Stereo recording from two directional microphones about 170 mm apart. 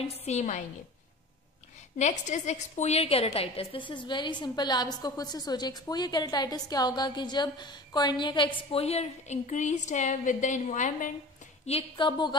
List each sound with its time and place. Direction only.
0.1 s a woman's voice: 40° left (ahead or behind)
2.0 s a woman's voice: 45° left (ahead or behind)
11.6 s a woman's voice: 30° left (ahead or behind)